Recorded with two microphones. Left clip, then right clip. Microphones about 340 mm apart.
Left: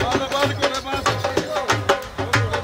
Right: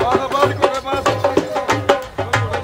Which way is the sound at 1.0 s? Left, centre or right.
Centre.